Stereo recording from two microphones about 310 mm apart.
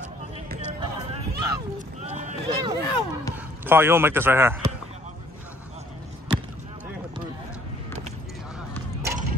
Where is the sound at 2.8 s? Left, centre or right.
Centre.